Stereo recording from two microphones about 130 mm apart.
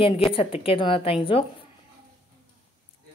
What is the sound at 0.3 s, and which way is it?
Speech, 45° left (ahead or behind).